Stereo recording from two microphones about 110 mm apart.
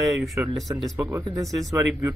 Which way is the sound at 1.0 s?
25° right (ahead or behind).